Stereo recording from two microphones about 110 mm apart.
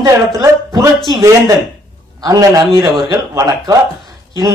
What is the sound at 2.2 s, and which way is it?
A man's voice, 35° right (ahead or behind).